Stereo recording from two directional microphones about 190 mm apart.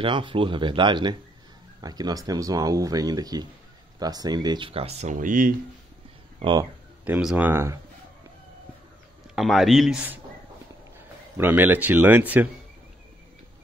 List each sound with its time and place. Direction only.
0.0 s speech: 25° right (ahead or behind); by 5.5 s 45° right (ahead or behind)
6.4 s speech: 20° right (ahead or behind)
7.1 s speech: 5° right (ahead or behind)
9.3 s speech: centre (ahead or behind)
11.3 s speech: 10° right (ahead or behind)